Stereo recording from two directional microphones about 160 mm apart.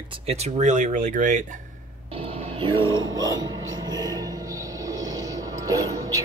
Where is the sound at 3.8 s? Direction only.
25° right (ahead or behind).